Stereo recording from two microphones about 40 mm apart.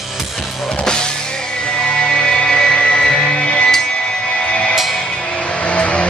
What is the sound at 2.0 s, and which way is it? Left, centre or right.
Music, centre.